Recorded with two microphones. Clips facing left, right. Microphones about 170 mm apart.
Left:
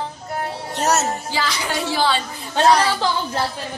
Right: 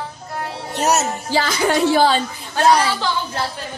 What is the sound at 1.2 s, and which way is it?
Speech, 45° right (ahead or behind).